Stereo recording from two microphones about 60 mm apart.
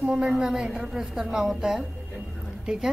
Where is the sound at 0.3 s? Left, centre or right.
Centre.